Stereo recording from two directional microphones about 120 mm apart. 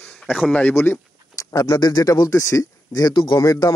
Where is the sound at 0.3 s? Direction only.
5° left (ahead or behind).